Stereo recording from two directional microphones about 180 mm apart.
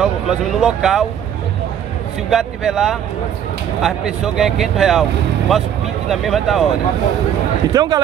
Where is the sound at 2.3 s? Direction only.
Centre (ahead or behind).